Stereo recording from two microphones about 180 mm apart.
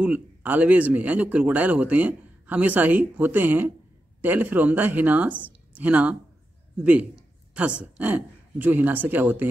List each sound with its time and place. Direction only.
0.0 s a man's voice: 10° right (ahead or behind)